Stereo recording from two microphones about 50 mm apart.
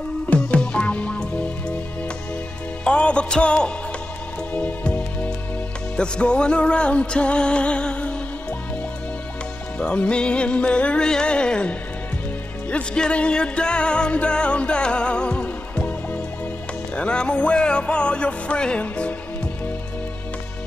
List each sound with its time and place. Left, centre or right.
0.3 s music: left
2.8 s music: left
9.8 s music: left
12.9 s music: centre